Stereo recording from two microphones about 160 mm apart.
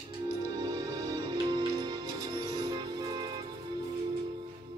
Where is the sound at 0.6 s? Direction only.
25° right (ahead or behind).